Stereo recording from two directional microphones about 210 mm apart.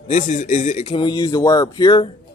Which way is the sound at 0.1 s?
35° left (ahead or behind).